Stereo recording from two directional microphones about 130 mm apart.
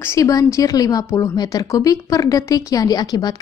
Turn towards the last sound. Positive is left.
turn(degrees=25)  # may be behind; listen again after turning